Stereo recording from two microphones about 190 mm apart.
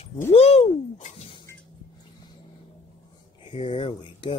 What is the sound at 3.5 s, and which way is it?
Speech, 30° left (ahead or behind).